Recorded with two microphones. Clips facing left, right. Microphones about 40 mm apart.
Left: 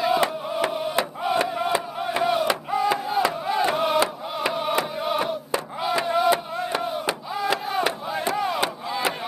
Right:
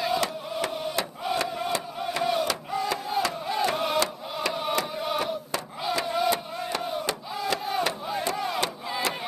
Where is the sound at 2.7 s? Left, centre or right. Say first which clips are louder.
Left 5 dB; centre.